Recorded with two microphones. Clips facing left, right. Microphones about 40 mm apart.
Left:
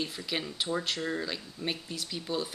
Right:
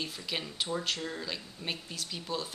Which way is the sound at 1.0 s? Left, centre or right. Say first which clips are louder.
Left 5 dB; centre.